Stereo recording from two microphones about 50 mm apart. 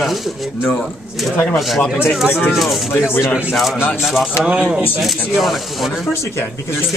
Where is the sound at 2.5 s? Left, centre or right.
Centre.